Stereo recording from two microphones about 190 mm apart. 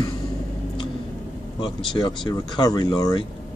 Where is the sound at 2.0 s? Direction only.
25° left (ahead or behind).